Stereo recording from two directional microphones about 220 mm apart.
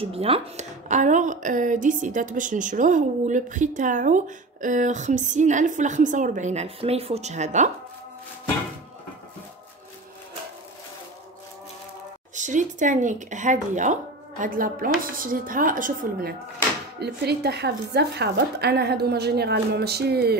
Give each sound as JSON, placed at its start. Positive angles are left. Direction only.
{"t": 0.0, "sound": "a woman's voice", "side_deg": -25}
{"t": 12.4, "sound": "a woman's voice", "side_deg": -35}